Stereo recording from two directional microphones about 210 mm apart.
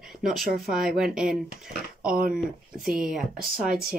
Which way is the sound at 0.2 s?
Centre (ahead or behind).